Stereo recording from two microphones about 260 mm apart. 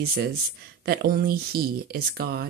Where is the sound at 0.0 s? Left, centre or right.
Right.